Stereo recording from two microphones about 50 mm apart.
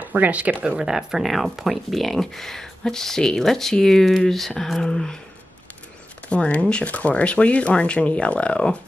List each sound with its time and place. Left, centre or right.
0.0 s speech: right
0.7 s speech: centre
6.2 s speech: left